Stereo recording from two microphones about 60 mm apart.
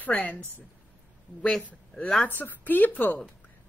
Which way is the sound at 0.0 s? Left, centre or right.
Left.